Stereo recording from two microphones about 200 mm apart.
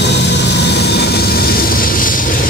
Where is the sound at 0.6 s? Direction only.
55° left (ahead or behind).